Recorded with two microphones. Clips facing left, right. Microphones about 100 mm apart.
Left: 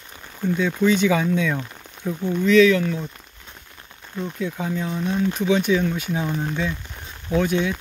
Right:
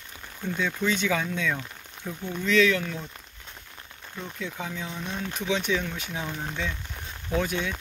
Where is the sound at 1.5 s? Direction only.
30° left (ahead or behind).